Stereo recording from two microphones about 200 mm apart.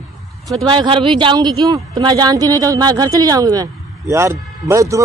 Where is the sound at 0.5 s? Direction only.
20° right (ahead or behind).